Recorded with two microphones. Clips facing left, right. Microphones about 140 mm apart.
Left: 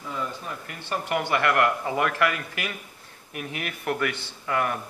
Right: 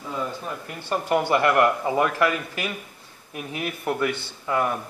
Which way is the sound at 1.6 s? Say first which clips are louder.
Right 3 dB; 20° right (ahead or behind).